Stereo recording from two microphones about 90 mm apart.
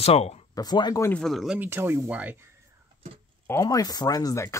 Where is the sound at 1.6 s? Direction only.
25° right (ahead or behind).